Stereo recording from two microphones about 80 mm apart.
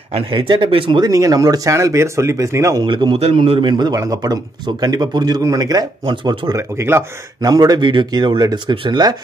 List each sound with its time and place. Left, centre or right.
0.3 s speech: right
1.1 s speech: right
2.8 s a man's voice: right
3.9 s speech: right
5.4 s speech: right
6.0 s speech: right
6.8 s speech: right
7.4 s speech: right
7.8 s a man's voice: right